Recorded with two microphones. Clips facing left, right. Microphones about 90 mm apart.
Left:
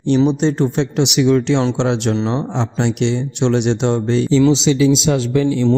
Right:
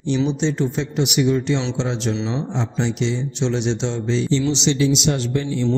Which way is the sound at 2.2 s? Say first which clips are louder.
Left 5 dB; 45° left (ahead or behind).